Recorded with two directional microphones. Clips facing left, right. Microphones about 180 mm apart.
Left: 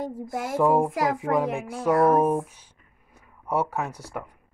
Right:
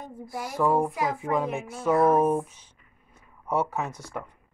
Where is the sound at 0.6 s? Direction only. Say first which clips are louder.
Left 3 dB; 20° left (ahead or behind).